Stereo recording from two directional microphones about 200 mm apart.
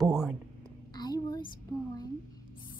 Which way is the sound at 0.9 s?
20° left (ahead or behind).